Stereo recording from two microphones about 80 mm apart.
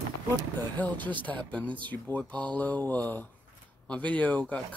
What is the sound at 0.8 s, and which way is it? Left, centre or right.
Speech, left.